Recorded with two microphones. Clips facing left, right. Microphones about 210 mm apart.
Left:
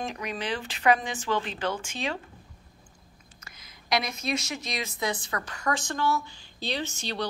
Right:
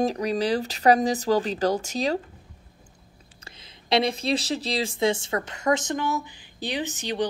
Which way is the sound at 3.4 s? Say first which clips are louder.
Right 5 dB; 30° right (ahead or behind).